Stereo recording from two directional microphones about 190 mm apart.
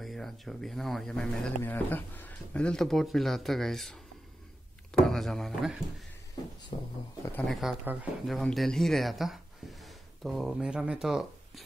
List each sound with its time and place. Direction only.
0.0 s speech: centre (ahead or behind)
5.0 s speech: centre (ahead or behind)
6.7 s speech: 40° left (ahead or behind)
7.4 s speech: centre (ahead or behind)